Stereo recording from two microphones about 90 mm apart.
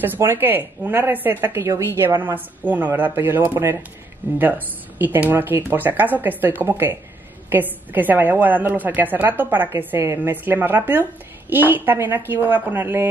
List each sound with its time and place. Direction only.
0.0 s speech: 25° right (ahead or behind)